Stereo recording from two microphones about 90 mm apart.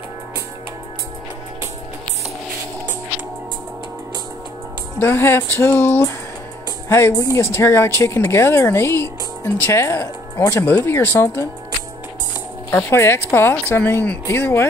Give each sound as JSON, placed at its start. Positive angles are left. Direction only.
{"t": 5.0, "sound": "speech", "side_deg": 25}
{"t": 12.7, "sound": "speech", "side_deg": 25}